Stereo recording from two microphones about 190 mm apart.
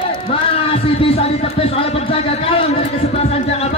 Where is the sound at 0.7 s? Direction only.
30° left (ahead or behind).